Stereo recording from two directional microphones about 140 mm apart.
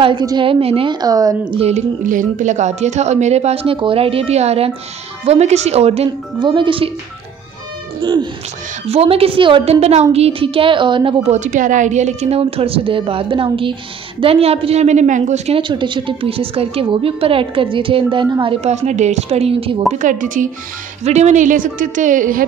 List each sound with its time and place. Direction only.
0.0 s a woman's voice: 30° right (ahead or behind)
1.0 s speech: 25° right (ahead or behind)
2.0 s speech: 70° right (ahead or behind); by 6.0 s 45° right (ahead or behind)
6.4 s a woman's voice: 35° right (ahead or behind)
8.0 s a woman's voice: 35° right (ahead or behind)
8.8 s a woman's voice: 45° right (ahead or behind)
11.2 s speech: 60° right (ahead or behind)
15.6 s a woman's voice: 35° right (ahead or behind)
18.7 s speech: 55° right (ahead or behind)
19.9 s a woman's voice: 65° right (ahead or behind)
21.0 s a woman's voice: 55° right (ahead or behind)